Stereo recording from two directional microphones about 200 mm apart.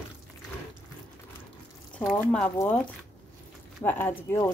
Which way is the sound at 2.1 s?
10° left (ahead or behind).